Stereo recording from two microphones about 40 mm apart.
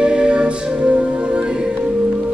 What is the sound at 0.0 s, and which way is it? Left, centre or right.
Music, right.